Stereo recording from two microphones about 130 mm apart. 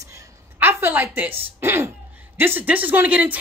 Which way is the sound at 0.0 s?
25° right (ahead or behind).